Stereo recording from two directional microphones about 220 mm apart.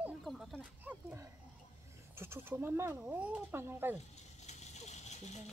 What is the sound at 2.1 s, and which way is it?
Speech, 10° right (ahead or behind).